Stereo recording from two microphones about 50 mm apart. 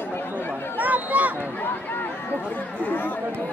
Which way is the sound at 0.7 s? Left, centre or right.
Right.